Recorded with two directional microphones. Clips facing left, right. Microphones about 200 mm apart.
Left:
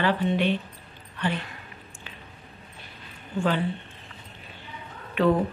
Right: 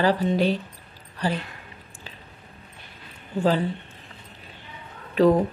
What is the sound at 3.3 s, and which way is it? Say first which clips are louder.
Speech: right 3 dB; 40° right (ahead or behind).